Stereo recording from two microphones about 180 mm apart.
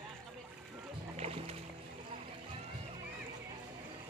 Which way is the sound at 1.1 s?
35° right (ahead or behind).